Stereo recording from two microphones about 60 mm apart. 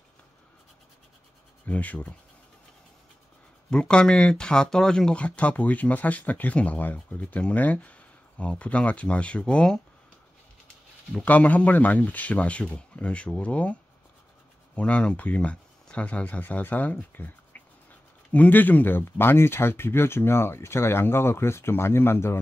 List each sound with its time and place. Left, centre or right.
1.7 s speech: left
3.7 s speech: centre
11.1 s speech: left
14.8 s speech: centre; by 22.4 s left